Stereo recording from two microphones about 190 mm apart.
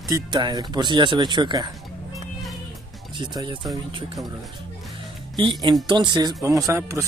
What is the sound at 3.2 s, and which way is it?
Speech, 25° right (ahead or behind).